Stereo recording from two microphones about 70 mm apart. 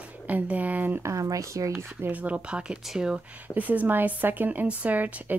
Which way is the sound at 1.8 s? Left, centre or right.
Right.